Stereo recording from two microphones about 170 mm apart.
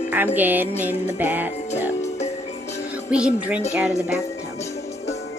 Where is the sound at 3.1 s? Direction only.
5° right (ahead or behind).